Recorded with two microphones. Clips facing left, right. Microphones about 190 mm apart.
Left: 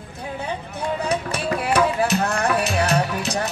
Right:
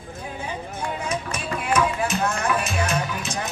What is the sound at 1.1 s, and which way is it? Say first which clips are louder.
Music: left 5 dB; 65° left (ahead or behind).